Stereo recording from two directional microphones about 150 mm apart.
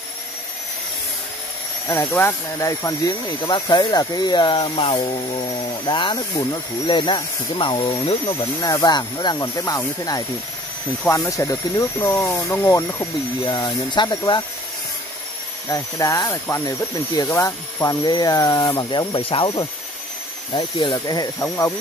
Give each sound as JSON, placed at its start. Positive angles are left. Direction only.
{"t": 1.9, "sound": "speech", "side_deg": 15}
{"t": 8.5, "sound": "speech", "side_deg": 25}
{"t": 13.5, "sound": "speech", "side_deg": 30}
{"t": 15.7, "sound": "speech", "side_deg": 25}
{"t": 21.4, "sound": "speech", "side_deg": 15}